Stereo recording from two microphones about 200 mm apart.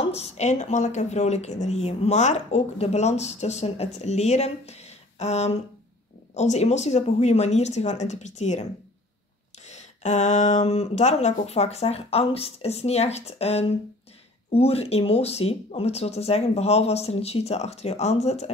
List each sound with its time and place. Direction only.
0.1 s speech: 35° left (ahead or behind)
9.7 s speech: 35° left (ahead or behind)